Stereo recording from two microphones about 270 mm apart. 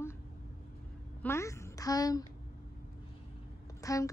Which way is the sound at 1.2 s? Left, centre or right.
Centre.